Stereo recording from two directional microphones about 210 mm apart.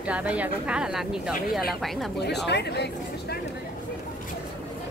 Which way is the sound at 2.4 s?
55° left (ahead or behind).